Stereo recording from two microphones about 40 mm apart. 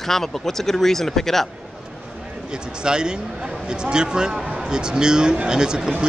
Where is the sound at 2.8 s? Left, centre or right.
Centre.